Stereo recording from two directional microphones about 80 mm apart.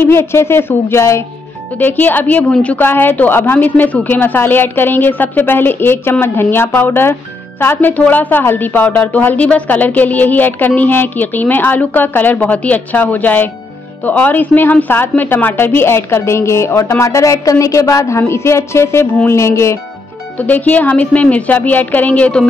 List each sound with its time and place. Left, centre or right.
0.0 s speech: left
1.8 s a woman's voice: left
2.8 s a woman's voice: left
20.3 s a woman's voice: left